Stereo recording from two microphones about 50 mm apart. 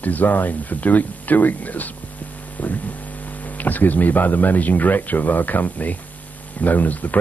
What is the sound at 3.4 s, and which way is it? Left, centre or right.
Speech, left.